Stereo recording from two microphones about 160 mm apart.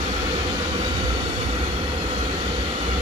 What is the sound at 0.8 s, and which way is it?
Train, 30° right (ahead or behind).